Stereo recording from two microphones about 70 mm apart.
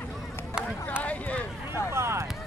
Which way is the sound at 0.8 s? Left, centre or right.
Left.